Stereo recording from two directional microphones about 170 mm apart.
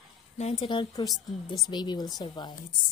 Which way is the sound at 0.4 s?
40° left (ahead or behind).